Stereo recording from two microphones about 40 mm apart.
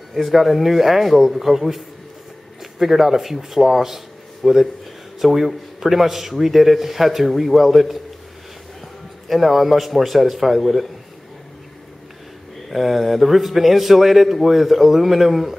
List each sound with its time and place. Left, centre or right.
0.1 s a man's voice: centre
9.3 s a man's voice: centre
12.6 s a man's voice: centre